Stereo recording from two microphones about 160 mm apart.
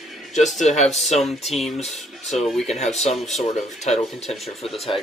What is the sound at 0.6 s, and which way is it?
Speech, 45° left (ahead or behind).